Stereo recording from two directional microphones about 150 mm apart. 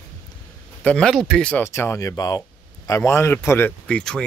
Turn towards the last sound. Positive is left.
turn(degrees=5)  # may be behind; listen again after turning